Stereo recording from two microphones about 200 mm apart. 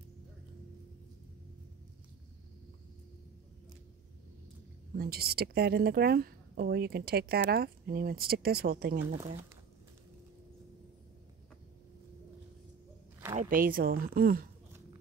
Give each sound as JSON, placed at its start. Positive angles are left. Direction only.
{"t": 4.9, "sound": "a woman's voice", "side_deg": -50}
{"t": 13.4, "sound": "a woman's voice", "side_deg": -45}